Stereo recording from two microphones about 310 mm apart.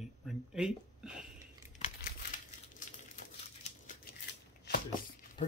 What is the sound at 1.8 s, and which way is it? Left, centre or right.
Crumpling, left.